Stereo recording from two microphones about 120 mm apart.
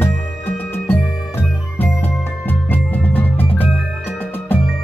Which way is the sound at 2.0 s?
15° left (ahead or behind).